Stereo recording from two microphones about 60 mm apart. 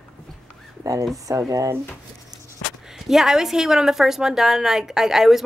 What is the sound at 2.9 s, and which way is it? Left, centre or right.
A woman's voice, centre.